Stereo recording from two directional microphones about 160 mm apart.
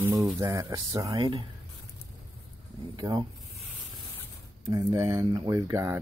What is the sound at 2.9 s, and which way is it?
Speech, 25° right (ahead or behind).